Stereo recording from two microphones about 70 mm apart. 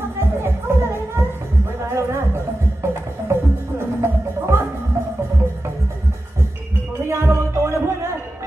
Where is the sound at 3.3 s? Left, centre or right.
Right.